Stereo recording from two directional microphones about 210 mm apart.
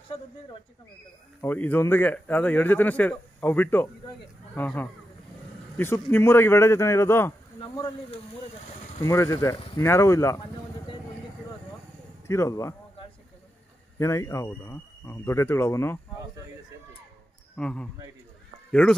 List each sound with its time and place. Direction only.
1.4 s speech: 10° left (ahead or behind)
7.6 s speech: 25° left (ahead or behind)
12.3 s speech: 15° left (ahead or behind)
13.9 s speech: 15° left (ahead or behind)
17.6 s speech: 5° left (ahead or behind)